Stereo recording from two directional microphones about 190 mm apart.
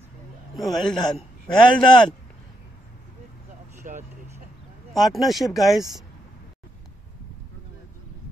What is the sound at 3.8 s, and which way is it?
Vehicle, 40° right (ahead or behind).